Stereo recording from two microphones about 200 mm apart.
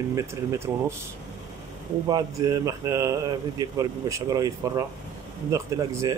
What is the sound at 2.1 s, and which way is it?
Speech, 20° right (ahead or behind).